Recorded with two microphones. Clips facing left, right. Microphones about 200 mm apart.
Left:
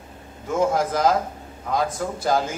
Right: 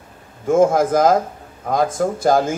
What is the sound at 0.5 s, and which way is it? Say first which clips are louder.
A man's voice: right 7 dB; 50° right (ahead or behind).